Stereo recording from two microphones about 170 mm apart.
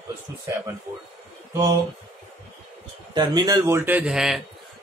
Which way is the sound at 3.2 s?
25° right (ahead or behind).